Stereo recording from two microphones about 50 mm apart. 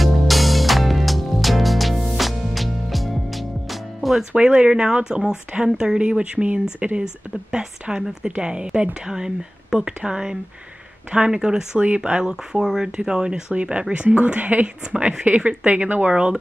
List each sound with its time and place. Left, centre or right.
0.0 s music: centre
4.3 s speech: right